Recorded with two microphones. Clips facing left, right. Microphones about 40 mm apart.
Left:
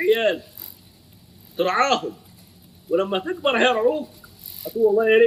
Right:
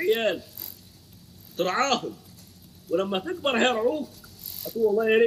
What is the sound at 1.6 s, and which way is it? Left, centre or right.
A man's voice, centre.